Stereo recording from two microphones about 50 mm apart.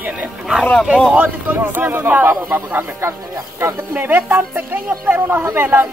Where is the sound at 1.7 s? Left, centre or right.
Right.